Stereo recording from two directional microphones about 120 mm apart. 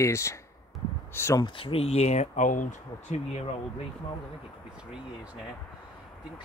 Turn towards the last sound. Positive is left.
turn(degrees=-10)  # may be behind; listen again after turning